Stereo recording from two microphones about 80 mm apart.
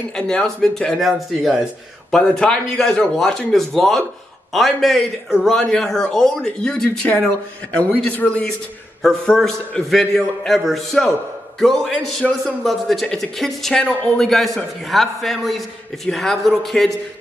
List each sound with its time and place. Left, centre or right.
0.1 s a man's voice: centre